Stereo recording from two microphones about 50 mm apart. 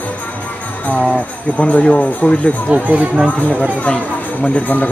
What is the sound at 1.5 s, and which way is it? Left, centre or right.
Speech, left.